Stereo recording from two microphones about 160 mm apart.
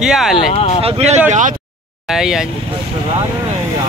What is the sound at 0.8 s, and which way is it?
Speech, 40° right (ahead or behind).